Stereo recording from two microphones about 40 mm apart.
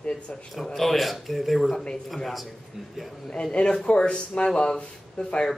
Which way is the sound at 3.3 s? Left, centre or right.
Left.